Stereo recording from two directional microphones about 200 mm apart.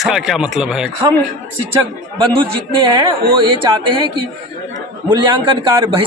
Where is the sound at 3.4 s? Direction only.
25° right (ahead or behind).